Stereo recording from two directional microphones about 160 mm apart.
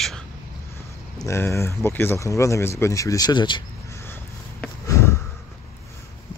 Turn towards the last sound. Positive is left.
turn(degrees=15)  # may be behind; listen again after turning